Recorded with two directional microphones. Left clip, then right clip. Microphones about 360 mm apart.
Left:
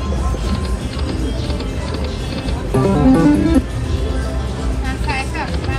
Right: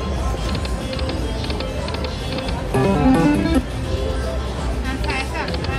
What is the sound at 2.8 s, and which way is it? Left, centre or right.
Music, centre.